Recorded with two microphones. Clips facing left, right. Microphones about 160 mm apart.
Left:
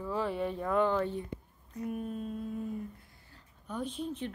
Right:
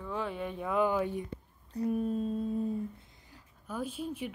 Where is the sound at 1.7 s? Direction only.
35° right (ahead or behind).